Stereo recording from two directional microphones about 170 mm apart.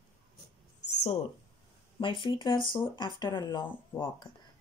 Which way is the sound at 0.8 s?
90° left.